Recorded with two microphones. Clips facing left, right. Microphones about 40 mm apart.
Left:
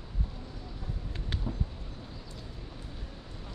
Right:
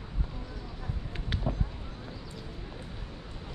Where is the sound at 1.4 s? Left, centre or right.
Right.